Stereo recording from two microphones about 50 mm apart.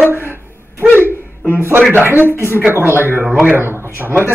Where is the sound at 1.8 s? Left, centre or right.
Right.